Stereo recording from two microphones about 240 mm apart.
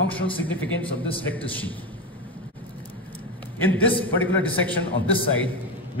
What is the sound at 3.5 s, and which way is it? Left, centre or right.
A man's voice, centre.